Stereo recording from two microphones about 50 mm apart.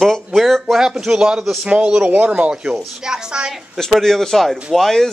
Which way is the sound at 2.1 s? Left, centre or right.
Right.